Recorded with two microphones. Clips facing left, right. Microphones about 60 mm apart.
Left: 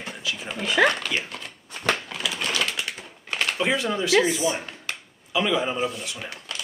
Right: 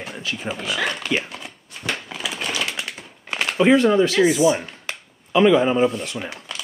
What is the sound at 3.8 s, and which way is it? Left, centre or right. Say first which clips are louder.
Speech: right 10 dB; right.